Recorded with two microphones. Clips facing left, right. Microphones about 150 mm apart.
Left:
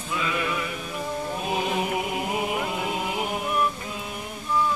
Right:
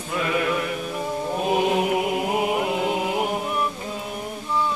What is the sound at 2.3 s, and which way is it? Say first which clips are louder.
Music: right 5 dB; 55° right (ahead or behind).